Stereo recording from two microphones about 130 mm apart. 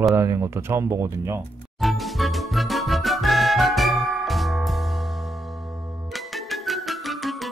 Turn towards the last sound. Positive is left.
turn(degrees=0)  # may be behind; listen again after turning